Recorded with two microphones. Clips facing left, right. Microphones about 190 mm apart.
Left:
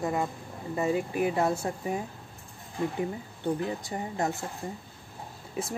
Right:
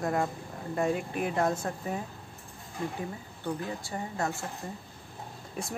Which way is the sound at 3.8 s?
20° left (ahead or behind).